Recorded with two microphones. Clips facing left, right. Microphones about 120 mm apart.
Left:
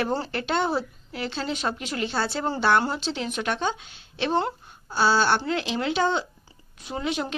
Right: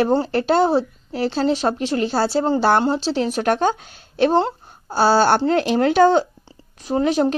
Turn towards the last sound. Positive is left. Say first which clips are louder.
# right 11 dB
turn(degrees=-40)  # may be behind; listen again after turning